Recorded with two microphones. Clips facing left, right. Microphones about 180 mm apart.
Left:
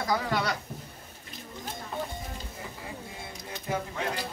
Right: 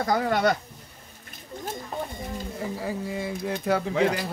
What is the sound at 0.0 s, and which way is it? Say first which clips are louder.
Speech: right 6 dB; 50° right (ahead or behind).